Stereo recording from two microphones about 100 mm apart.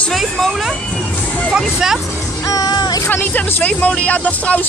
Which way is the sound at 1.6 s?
5° right (ahead or behind).